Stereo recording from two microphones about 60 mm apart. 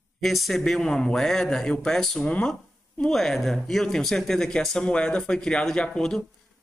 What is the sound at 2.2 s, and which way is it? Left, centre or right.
Speech, centre.